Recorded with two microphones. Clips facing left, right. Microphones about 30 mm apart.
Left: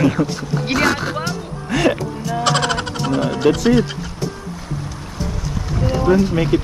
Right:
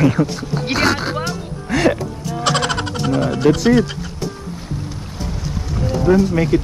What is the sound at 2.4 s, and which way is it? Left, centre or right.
Music, centre.